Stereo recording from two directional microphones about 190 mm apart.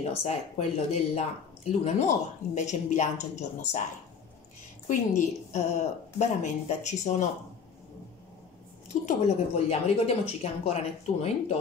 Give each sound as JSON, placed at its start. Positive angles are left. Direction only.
{"t": 0.1, "sound": "speech", "side_deg": 35}
{"t": 4.8, "sound": "speech", "side_deg": 40}
{"t": 9.0, "sound": "speech", "side_deg": 35}